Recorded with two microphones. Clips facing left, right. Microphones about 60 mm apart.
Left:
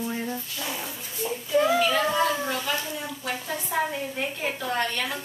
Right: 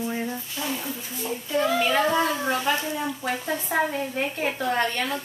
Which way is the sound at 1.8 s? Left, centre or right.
Right.